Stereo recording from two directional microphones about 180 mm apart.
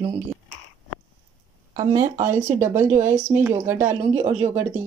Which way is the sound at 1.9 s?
15° right (ahead or behind).